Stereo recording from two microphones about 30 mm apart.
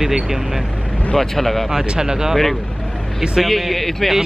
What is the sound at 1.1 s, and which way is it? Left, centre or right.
Speech, centre.